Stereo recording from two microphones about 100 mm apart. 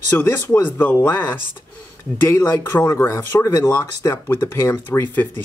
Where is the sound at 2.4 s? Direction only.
35° left (ahead or behind).